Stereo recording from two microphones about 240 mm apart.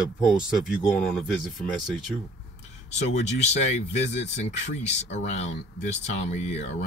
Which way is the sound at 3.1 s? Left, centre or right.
Left.